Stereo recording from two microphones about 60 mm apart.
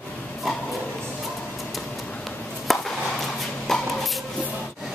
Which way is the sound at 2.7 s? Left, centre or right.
Centre.